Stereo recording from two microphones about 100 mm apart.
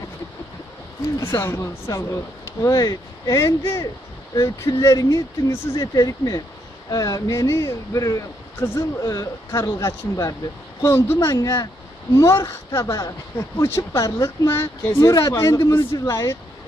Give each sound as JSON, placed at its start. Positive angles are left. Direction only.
{"t": 1.1, "sound": "speech", "side_deg": 25}